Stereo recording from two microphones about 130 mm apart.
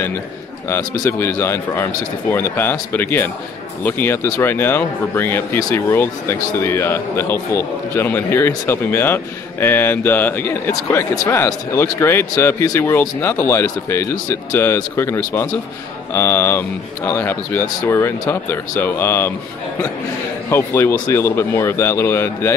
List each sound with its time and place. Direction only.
0.7 s a man's voice: 20° left (ahead or behind)
20.4 s speech: 20° left (ahead or behind)